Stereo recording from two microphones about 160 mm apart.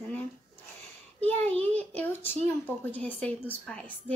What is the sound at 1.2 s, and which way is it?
A woman's voice, 10° left (ahead or behind).